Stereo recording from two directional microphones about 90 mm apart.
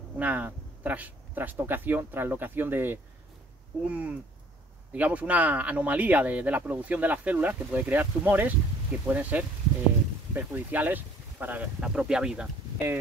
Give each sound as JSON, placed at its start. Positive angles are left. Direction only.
{"t": 0.2, "sound": "speech", "side_deg": -20}
{"t": 11.8, "sound": "speech", "side_deg": -10}
{"t": 12.7, "sound": "speech", "side_deg": -20}